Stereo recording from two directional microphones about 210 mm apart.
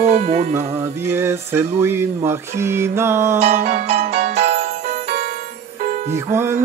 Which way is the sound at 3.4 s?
35° right (ahead or behind).